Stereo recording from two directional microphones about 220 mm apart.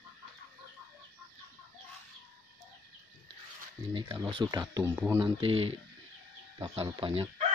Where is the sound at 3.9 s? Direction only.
20° right (ahead or behind).